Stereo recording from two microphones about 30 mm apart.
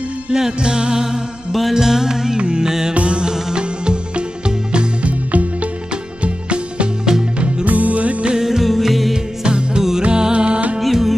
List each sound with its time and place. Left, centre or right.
0.3 s music: centre
1.7 s music: centre
2.9 s music: right
3.3 s music: centre
3.5 s music: right
5.3 s music: right
6.2 s music: right
7.1 s music: right
7.6 s music: right
8.6 s music: centre
9.1 s music: right
10.8 s music: centre